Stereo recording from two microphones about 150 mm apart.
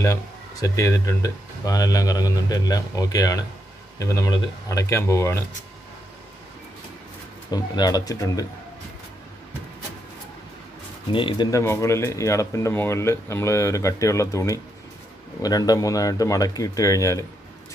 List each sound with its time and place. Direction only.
0.0 s speech: 20° left (ahead or behind)
7.5 s speech: 25° left (ahead or behind)
11.1 s speech: 35° left (ahead or behind)
11.5 s speech: 20° left (ahead or behind)